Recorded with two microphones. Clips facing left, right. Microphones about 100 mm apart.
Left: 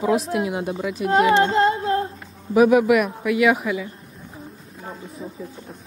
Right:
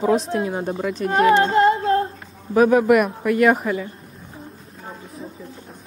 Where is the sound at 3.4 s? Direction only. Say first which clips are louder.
Right 2 dB; 40° right (ahead or behind).